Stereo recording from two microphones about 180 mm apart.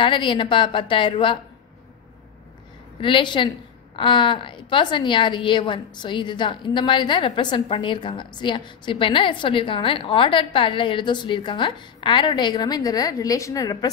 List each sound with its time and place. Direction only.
0.0 s a woman's voice: 25° left (ahead or behind)
3.0 s a woman's voice: 25° left (ahead or behind)